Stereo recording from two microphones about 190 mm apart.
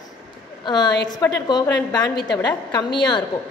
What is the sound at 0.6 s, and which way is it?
A woman's voice, 25° left (ahead or behind).